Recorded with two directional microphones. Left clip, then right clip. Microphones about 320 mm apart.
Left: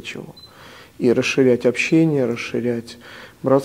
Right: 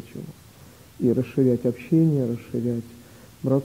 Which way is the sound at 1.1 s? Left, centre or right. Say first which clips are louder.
Left 7 dB; centre.